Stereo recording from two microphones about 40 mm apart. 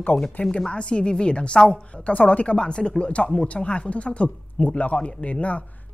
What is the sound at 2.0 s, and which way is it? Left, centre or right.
Speech, left.